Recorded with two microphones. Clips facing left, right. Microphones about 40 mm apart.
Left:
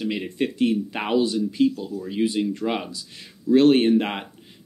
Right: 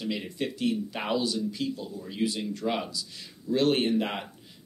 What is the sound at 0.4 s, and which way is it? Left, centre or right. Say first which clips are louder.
Speech: left 8 dB; left.